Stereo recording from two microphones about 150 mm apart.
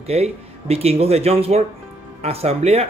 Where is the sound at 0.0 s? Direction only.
45° right (ahead or behind).